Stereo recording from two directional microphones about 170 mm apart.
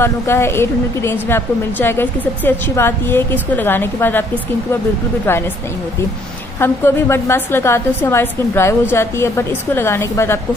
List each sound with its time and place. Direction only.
0.0 s a woman's voice: 15° left (ahead or behind)
6.6 s a woman's voice: 15° left (ahead or behind)